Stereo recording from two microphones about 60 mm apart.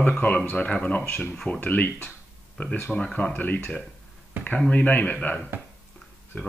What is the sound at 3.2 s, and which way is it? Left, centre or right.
Speech, left.